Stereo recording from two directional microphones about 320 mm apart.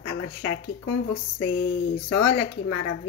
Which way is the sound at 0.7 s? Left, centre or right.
Left.